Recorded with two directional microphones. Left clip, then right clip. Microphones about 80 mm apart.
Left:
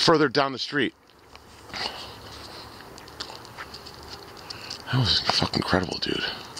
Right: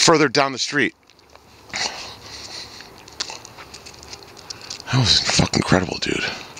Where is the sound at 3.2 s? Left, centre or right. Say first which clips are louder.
Right 8 dB; right.